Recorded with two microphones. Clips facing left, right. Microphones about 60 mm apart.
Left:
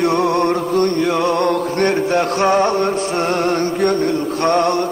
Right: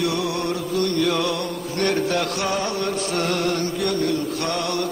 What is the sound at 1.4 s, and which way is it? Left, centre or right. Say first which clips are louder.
Music: left 12 dB; left.